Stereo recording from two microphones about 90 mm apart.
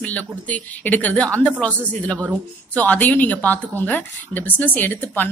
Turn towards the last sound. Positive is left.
turn(degrees=20)  # may be behind; listen again after turning